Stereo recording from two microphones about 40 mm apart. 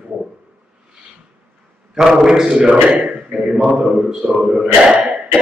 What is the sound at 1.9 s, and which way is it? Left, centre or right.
Speech, centre.